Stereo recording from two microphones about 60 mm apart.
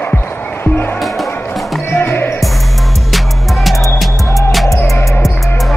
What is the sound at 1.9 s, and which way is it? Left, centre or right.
Music, left.